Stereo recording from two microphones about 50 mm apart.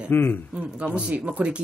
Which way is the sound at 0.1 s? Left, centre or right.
Left.